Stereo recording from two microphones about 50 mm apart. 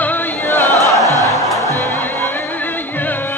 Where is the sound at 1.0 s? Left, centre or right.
Right.